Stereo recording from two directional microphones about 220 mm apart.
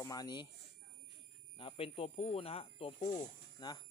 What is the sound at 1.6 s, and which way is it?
Speech, 25° left (ahead or behind).